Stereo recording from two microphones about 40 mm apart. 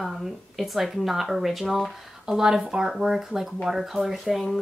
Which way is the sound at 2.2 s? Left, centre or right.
Centre.